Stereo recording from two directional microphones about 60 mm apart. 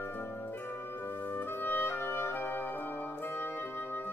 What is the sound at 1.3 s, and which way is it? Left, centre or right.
Music, left.